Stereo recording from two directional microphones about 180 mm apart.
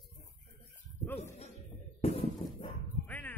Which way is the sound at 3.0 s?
10° left (ahead or behind).